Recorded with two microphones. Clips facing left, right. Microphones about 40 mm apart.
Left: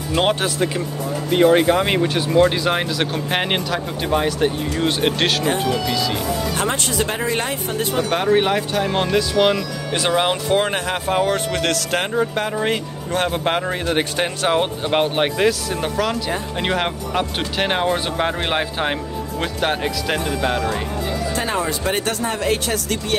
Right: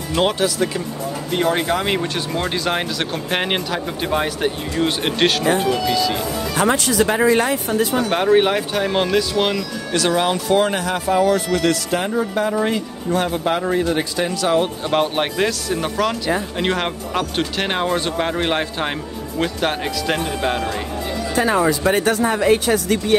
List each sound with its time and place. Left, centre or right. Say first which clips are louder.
0.2 s speech: right 1 dB; left
1.3 s speech: left 5 dB; centre
8.1 s speech: right 1 dB; centre
9.9 s speech: right 1 dB; left
12.6 s speech: right 1 dB; left
14.5 s speech: right 1 dB; left
15.1 s speech: left 2 dB; centre
21.6 s speech: right 5 dB; right